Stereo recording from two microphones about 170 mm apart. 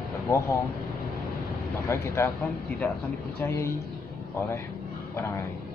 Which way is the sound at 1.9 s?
15° left (ahead or behind).